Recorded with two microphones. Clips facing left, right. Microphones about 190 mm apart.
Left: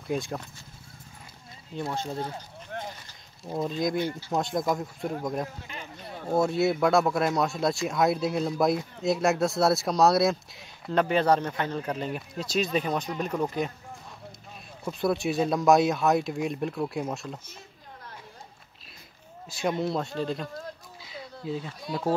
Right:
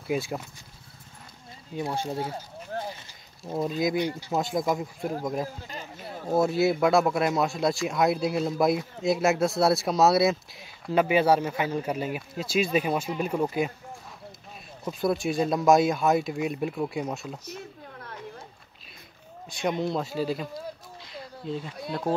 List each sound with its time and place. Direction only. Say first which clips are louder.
0.0 s speech: right 2 dB; 5° right (ahead or behind)
1.8 s speech: right 2 dB; 15° right (ahead or behind)
2.7 s a sound: right 3 dB; 35° right (ahead or behind)
3.4 s speech: right 1 dB; 5° right (ahead or behind)
14.9 s speech: even; centre (ahead or behind)
19.8 s a sound: right 1 dB; centre (ahead or behind)
21.8 s speech: left 1 dB; centre (ahead or behind)